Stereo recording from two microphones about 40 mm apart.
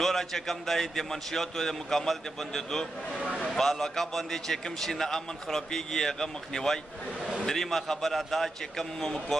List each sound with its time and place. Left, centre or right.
0.0 s a man's voice: centre
3.2 s speech: right
3.5 s a man's voice: centre